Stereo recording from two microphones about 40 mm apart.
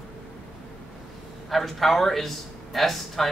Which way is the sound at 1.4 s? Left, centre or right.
Centre.